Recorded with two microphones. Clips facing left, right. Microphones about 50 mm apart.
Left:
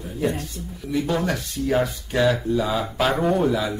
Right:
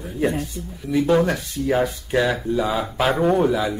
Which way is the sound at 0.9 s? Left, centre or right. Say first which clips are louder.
Right 5 dB; centre.